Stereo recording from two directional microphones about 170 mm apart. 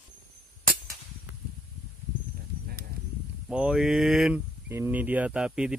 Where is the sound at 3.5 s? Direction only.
5° right (ahead or behind).